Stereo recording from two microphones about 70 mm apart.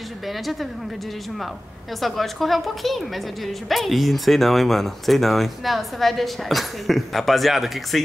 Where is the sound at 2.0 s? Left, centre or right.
Centre.